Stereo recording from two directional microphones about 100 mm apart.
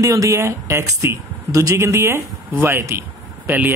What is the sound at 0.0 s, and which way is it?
Speech, 35° right (ahead or behind).